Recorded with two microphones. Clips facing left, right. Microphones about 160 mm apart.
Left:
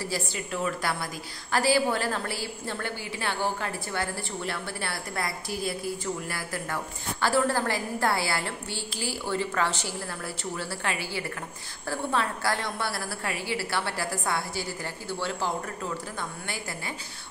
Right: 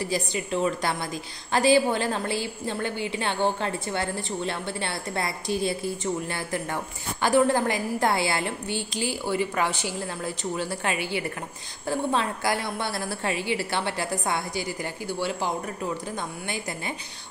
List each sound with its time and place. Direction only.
0.0 s a woman's voice: 20° right (ahead or behind)